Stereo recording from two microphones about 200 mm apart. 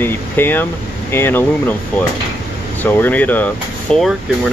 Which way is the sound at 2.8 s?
10° left (ahead or behind).